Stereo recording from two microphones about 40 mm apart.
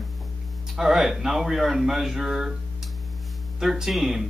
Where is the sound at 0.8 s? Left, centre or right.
Centre.